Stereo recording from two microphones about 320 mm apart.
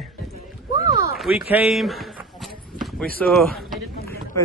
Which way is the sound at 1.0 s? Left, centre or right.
Centre.